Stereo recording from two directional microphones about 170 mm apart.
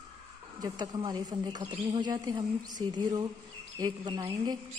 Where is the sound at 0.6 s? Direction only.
25° right (ahead or behind).